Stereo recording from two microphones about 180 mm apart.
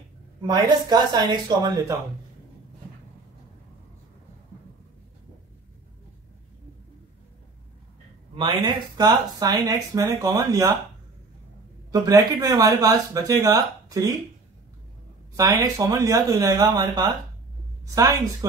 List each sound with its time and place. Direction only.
0.4 s speech: 25° right (ahead or behind)
8.4 s speech: 25° right (ahead or behind)
11.9 s speech: 20° right (ahead or behind)
15.3 s speech: 20° right (ahead or behind)